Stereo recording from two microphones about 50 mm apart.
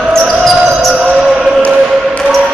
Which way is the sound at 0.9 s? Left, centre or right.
Centre.